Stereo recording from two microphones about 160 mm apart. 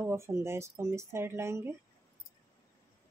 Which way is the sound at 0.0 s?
15° right (ahead or behind).